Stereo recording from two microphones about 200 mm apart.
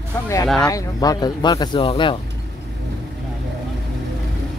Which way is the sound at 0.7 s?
15° left (ahead or behind).